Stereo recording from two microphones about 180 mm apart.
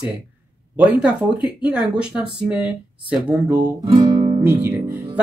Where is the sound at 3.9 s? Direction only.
25° right (ahead or behind).